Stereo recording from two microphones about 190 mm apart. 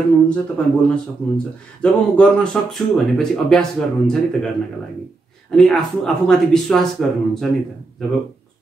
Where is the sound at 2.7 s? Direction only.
Centre (ahead or behind).